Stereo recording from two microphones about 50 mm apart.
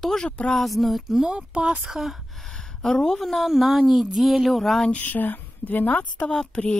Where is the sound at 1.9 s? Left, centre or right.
Centre.